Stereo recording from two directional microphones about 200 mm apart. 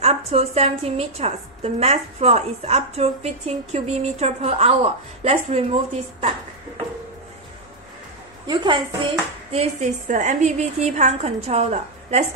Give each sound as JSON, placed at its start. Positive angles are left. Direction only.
{"t": 0.0, "sound": "a woman's voice", "side_deg": -30}
{"t": 8.5, "sound": "a woman's voice", "side_deg": -25}